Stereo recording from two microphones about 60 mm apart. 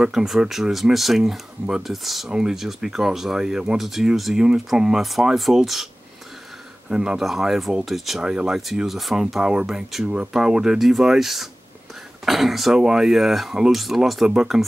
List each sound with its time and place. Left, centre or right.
0.0 s speech: centre
6.9 s speech: centre
10.0 s speech: centre